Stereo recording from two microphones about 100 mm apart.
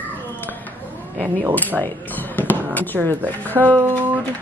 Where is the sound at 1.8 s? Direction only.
20° left (ahead or behind).